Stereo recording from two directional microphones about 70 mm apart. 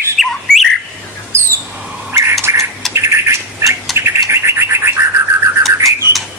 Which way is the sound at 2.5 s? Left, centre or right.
Right.